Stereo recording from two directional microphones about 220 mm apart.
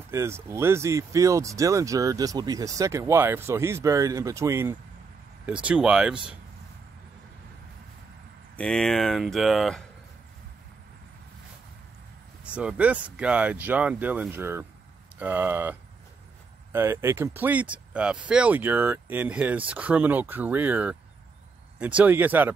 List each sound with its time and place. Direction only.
0.1 s speech: 15° right (ahead or behind)
8.5 s speech: 5° left (ahead or behind)
12.4 s speech: 5° right (ahead or behind)